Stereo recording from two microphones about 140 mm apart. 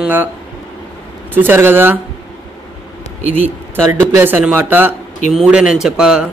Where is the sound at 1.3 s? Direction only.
15° right (ahead or behind).